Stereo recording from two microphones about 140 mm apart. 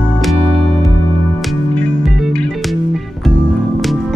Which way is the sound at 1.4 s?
5° left (ahead or behind).